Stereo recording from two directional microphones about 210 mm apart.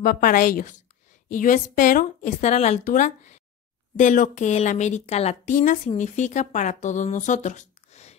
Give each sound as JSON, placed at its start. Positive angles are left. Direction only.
{"t": 0.0, "sound": "a woman's voice", "side_deg": 45}